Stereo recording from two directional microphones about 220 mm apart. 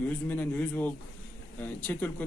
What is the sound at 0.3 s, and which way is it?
A man's voice, 5° left (ahead or behind).